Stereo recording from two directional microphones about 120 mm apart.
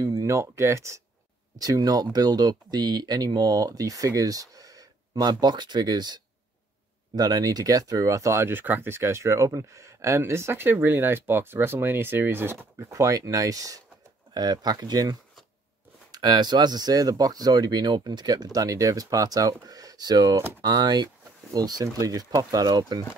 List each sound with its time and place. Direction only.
0.0 s speech: 30° right (ahead or behind)